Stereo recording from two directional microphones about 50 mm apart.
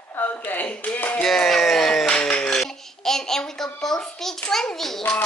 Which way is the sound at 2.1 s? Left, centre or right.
Left.